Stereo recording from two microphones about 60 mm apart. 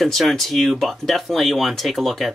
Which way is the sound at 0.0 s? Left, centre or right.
Centre.